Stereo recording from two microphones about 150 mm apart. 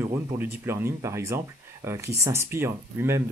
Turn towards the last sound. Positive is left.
turn(degrees=-15)  # may be behind; listen again after turning